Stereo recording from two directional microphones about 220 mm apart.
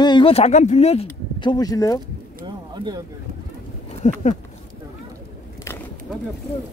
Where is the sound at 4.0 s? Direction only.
30° left (ahead or behind).